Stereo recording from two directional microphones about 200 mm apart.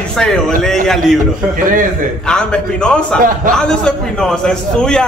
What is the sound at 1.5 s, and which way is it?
Speech, 45° right (ahead or behind).